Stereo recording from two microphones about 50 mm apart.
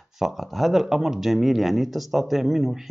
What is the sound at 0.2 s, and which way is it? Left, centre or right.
Speech, centre.